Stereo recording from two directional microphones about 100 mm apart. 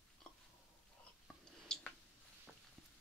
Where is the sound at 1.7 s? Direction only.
5° left (ahead or behind).